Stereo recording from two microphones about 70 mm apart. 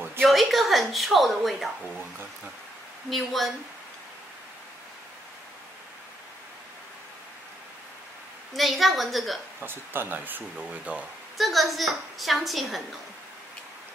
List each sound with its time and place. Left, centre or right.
0.2 s a woman's voice: centre
3.1 s a woman's voice: centre
8.5 s a woman's voice: centre
9.6 s speech: right
11.3 s a woman's voice: centre